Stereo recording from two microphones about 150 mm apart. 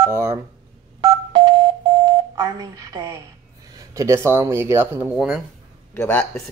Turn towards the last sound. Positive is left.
turn(degrees=15)  # may be behind; listen again after turning